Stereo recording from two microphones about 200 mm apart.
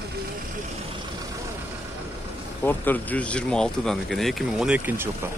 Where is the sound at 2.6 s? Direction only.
10° left (ahead or behind); by 5.3 s 10° right (ahead or behind).